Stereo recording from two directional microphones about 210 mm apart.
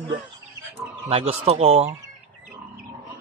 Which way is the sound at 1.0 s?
30° right (ahead or behind).